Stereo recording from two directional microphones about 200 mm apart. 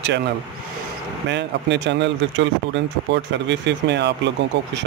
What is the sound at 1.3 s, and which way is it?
Speech, 60° right (ahead or behind).